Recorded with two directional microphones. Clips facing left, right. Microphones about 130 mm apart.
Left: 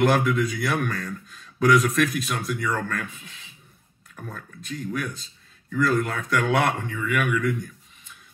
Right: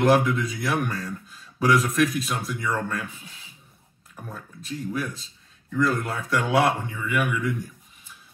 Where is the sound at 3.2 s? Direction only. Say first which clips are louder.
Even; 35° right (ahead or behind).